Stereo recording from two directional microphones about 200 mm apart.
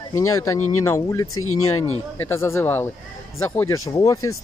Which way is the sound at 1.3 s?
90° left.